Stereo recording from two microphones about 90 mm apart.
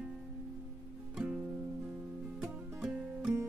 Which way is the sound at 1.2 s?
15° right (ahead or behind).